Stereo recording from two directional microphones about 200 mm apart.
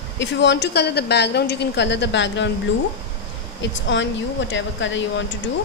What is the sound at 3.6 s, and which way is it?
A woman's voice, 65° left (ahead or behind).